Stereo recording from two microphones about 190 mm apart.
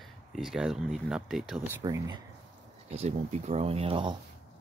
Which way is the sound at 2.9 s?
35° right (ahead or behind).